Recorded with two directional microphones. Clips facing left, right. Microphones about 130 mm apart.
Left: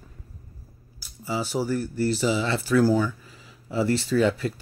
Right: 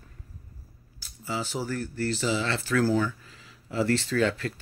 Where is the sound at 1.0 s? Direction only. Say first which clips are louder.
Left 3 dB; 10° left (ahead or behind).